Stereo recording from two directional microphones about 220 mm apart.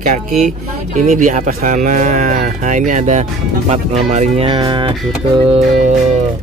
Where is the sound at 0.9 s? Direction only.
35° right (ahead or behind).